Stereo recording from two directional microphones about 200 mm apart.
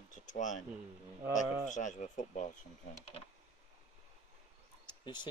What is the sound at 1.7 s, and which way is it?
Speech, 40° left (ahead or behind).